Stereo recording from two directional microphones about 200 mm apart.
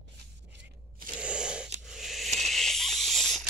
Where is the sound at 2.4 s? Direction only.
Centre (ahead or behind).